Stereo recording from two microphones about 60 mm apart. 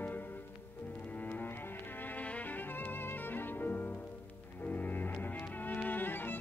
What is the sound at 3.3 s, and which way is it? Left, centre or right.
Music, left.